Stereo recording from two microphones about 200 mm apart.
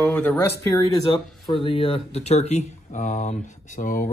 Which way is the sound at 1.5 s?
25° left (ahead or behind).